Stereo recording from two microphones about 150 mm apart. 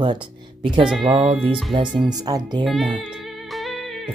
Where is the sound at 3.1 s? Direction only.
Centre (ahead or behind).